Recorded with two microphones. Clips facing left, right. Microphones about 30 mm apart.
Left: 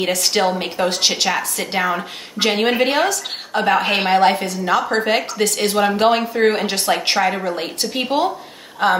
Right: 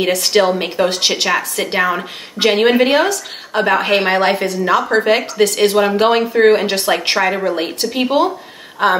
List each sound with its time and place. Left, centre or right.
0.2 s a woman's voice: centre